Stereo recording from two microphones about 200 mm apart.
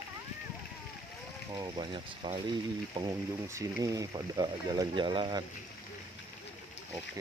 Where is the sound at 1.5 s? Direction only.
20° right (ahead or behind).